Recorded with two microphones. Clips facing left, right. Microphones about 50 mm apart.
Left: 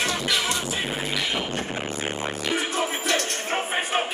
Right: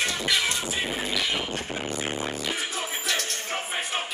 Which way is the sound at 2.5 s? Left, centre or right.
Left.